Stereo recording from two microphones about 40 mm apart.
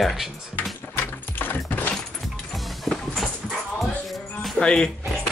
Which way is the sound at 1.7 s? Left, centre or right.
Left.